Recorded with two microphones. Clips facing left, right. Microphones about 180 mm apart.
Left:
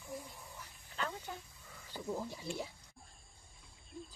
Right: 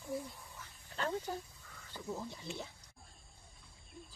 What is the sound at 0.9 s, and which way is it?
Snake, 40° right (ahead or behind).